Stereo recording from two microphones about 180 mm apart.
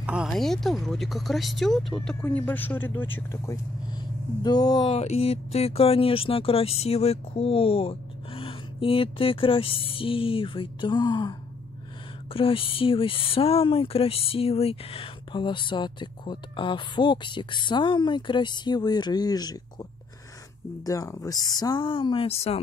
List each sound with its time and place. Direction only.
0.0 s speech: 5° right (ahead or behind); by 4.9 s 20° left (ahead or behind)
4.9 s speech: 35° left (ahead or behind)